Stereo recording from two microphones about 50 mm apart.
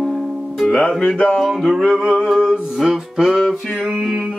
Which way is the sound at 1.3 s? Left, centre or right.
Centre.